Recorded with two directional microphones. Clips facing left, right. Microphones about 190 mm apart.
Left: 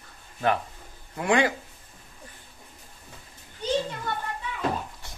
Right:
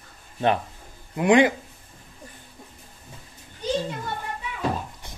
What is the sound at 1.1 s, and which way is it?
Speech, 20° right (ahead or behind).